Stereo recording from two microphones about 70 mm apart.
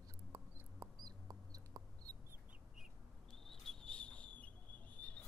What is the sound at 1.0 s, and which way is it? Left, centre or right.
Chicken, right.